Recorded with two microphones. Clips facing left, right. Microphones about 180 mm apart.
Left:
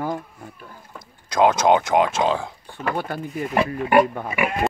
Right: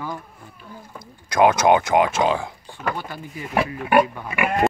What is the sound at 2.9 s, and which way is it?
Speech, 60° left (ahead or behind).